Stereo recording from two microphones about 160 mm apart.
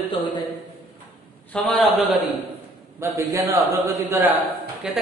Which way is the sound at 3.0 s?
20° right (ahead or behind).